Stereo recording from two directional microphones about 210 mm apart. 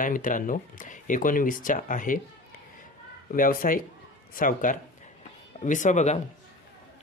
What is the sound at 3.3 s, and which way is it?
Speech, 40° left (ahead or behind).